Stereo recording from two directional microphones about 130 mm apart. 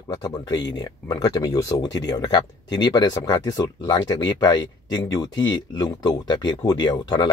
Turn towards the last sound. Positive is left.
turn(degrees=35)  # may be behind; listen again after turning